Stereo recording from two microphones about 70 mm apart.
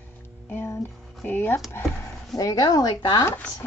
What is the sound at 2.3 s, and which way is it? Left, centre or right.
Speech, left.